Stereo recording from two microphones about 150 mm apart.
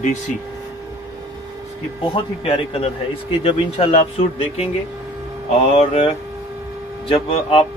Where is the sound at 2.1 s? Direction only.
35° left (ahead or behind).